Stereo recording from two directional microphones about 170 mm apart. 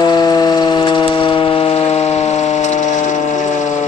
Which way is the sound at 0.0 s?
25° left (ahead or behind).